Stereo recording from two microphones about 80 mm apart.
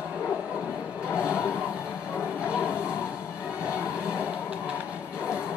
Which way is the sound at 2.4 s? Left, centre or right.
Centre.